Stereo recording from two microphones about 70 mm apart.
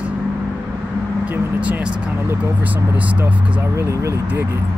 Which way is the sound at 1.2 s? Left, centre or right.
Right.